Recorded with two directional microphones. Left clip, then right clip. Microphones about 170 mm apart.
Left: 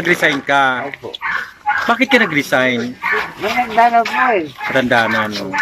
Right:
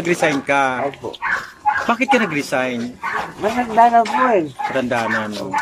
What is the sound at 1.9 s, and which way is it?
Speech, centre (ahead or behind).